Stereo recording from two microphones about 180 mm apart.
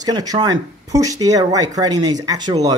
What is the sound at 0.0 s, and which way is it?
Speech, 20° right (ahead or behind).